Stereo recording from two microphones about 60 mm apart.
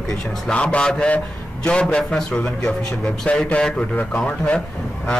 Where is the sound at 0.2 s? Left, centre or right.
Centre.